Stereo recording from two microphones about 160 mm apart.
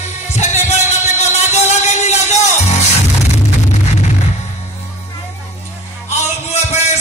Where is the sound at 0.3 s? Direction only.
50° left (ahead or behind).